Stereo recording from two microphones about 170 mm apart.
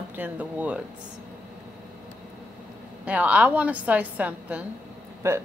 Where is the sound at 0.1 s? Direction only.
10° right (ahead or behind).